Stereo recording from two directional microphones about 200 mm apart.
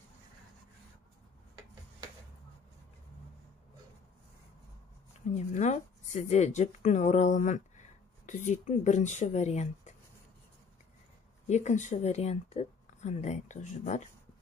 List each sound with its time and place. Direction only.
5.3 s speech: 35° left (ahead or behind)
11.4 s speech: 35° left (ahead or behind)